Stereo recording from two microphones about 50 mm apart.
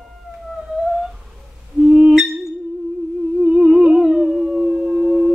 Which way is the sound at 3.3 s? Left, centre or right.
Centre.